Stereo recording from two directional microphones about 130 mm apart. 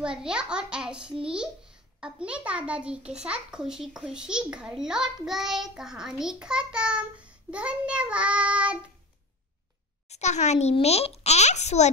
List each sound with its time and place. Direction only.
0.0 s a child's voice: 5° right (ahead or behind)
10.0 s a child's voice: 60° left (ahead or behind)